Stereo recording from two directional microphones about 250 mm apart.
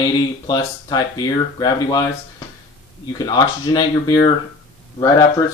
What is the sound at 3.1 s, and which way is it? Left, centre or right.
Speech, centre.